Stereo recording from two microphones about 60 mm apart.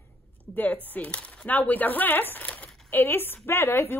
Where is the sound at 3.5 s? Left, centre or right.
Left.